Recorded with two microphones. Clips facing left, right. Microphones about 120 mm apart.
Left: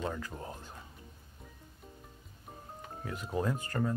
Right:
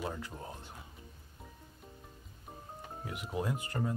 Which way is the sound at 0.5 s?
20° right (ahead or behind).